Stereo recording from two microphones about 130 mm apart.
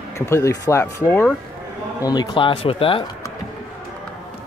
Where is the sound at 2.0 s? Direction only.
35° left (ahead or behind).